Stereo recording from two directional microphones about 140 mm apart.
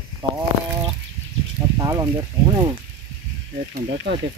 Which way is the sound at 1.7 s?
25° right (ahead or behind).